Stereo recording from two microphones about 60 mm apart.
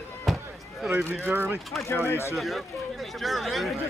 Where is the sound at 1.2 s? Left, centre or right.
Right.